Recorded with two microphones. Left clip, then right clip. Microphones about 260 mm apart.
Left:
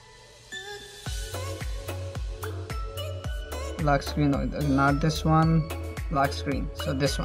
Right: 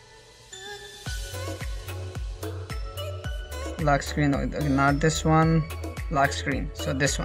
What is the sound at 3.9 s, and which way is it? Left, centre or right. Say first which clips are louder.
Speech: right 1 dB; centre.